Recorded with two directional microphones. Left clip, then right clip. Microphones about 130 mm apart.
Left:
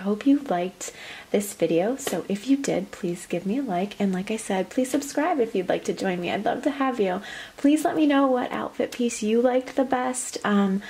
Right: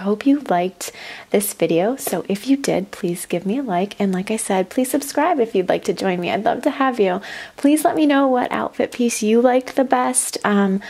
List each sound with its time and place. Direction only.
0.0 s speech: 30° right (ahead or behind)